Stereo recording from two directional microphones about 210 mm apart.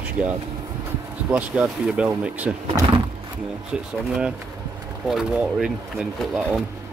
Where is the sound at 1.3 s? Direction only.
5° right (ahead or behind).